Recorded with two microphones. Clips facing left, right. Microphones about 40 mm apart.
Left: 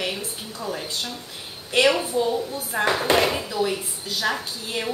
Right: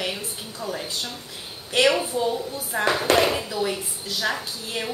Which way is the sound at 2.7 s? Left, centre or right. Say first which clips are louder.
Left 1 dB; centre.